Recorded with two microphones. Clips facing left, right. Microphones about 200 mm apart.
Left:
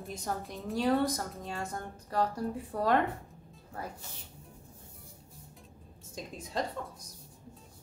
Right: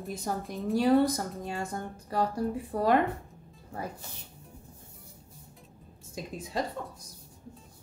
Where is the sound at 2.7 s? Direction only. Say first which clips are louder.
Right 3 dB; 10° right (ahead or behind).